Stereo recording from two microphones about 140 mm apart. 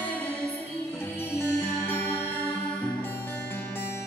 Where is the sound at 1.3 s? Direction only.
15° left (ahead or behind).